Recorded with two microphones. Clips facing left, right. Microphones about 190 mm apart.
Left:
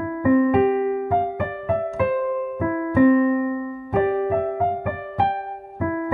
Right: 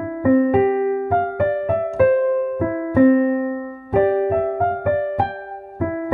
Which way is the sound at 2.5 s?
35° right (ahead or behind).